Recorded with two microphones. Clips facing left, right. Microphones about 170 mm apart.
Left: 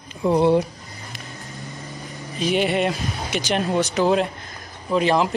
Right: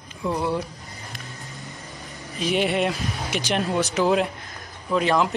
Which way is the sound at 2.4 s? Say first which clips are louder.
Left 2 dB; centre (ahead or behind).